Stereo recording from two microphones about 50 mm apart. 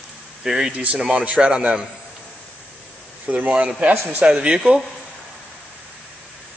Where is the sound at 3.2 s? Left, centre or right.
Right.